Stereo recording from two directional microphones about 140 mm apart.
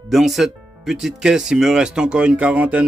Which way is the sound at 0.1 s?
Centre (ahead or behind).